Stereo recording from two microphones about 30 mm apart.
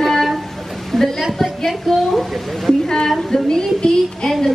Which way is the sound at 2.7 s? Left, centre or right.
Centre.